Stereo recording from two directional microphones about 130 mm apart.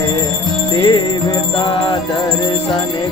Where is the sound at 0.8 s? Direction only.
35° left (ahead or behind).